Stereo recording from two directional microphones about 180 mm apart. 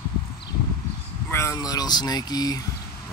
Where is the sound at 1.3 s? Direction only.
15° left (ahead or behind).